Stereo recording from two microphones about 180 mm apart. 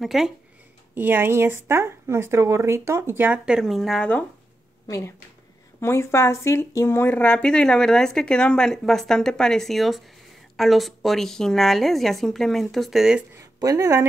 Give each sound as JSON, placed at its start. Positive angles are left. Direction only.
{"t": 0.0, "sound": "speech", "side_deg": 0}
{"t": 4.8, "sound": "speech", "side_deg": 20}
{"t": 13.4, "sound": "a woman's voice", "side_deg": -20}